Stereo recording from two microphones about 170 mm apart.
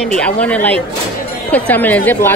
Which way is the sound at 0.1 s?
5° left (ahead or behind).